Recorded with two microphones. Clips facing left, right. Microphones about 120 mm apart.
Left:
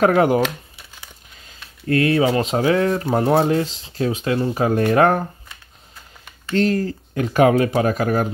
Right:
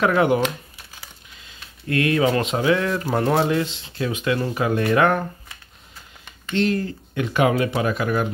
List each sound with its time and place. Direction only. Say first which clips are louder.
0.0 s speech: left 3 dB; 40° left (ahead or behind)
1.4 s speech: left 5 dB; 35° left (ahead or behind)
6.5 s speech: left 3 dB; 40° left (ahead or behind)